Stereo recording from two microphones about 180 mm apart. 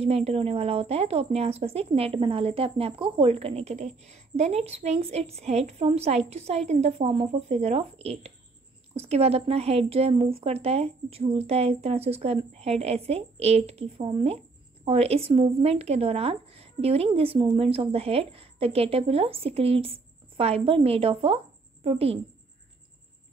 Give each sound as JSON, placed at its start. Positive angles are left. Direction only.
{"t": 0.0, "sound": "speech", "side_deg": -35}